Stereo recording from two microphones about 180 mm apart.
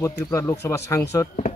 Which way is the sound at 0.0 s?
15° left (ahead or behind).